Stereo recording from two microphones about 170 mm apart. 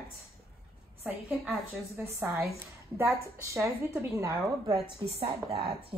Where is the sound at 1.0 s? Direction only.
10° right (ahead or behind).